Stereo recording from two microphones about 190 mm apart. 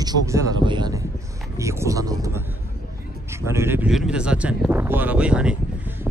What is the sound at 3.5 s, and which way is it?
Speech, 15° right (ahead or behind).